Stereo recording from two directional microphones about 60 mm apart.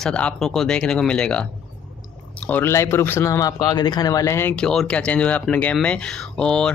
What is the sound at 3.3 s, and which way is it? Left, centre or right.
Speech, left.